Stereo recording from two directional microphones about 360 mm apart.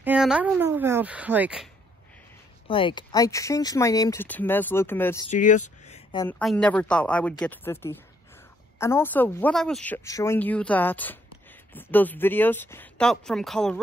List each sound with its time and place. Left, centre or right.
0.0 s a woman's voice: centre
2.7 s speech: centre
5.3 s a sound: left
6.2 s a woman's voice: centre